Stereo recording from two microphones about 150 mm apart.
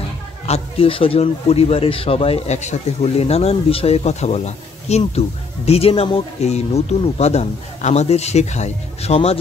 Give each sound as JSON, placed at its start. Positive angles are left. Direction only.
{"t": 0.5, "sound": "speech", "side_deg": 40}